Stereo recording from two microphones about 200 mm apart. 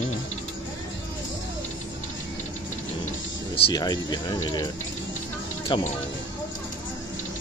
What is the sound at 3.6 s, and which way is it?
Speech, 20° left (ahead or behind).